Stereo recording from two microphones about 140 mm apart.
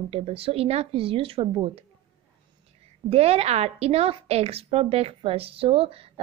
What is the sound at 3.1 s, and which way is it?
A woman's voice, 45° right (ahead or behind).